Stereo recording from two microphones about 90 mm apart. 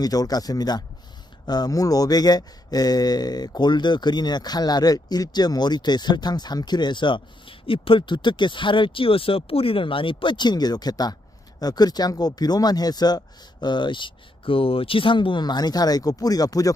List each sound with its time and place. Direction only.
0.0 s speech: 45° left (ahead or behind)